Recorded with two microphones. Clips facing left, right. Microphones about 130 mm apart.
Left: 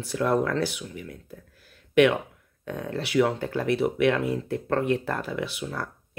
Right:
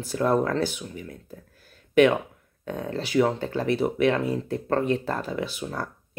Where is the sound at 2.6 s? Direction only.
30° right (ahead or behind).